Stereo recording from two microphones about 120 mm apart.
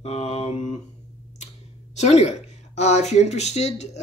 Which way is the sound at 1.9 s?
65° left (ahead or behind).